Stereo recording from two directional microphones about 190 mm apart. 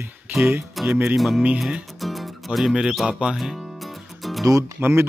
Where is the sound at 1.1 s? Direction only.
Centre (ahead or behind).